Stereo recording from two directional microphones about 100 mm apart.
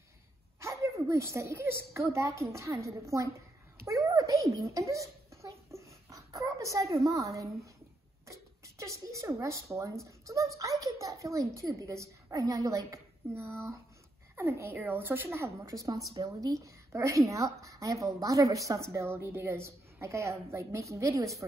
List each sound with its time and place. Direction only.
0.6 s a woman's voice: 30° right (ahead or behind)